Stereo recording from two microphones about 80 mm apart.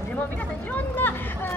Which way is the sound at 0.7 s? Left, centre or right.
Left.